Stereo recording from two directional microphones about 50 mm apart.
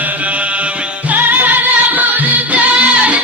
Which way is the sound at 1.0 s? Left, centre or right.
Right.